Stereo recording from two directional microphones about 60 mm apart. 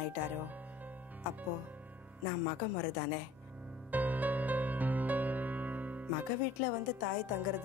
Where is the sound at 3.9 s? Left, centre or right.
Right.